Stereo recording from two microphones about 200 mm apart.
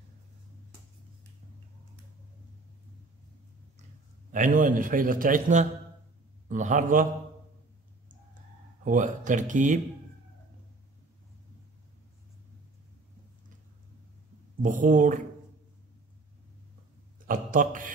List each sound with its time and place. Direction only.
4.3 s a man's voice: 40° right (ahead or behind)
8.8 s speech: 40° right (ahead or behind)
14.6 s speech: 40° right (ahead or behind)
17.3 s a man's voice: 40° right (ahead or behind)